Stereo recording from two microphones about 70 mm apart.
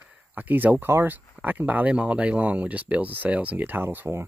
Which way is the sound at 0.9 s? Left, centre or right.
Right.